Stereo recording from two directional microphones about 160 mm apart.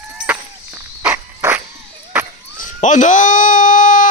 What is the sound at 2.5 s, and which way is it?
Wail, 50° left (ahead or behind).